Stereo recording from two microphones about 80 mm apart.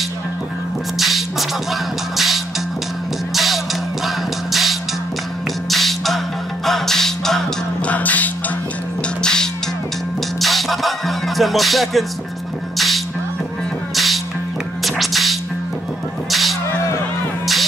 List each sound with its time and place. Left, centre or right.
0.9 s music: centre
7.8 s music: centre
9.2 s music: centre